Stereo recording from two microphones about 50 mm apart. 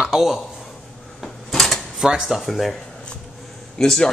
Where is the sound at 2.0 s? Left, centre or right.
Centre.